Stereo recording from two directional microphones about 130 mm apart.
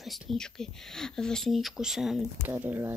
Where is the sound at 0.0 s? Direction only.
Centre (ahead or behind).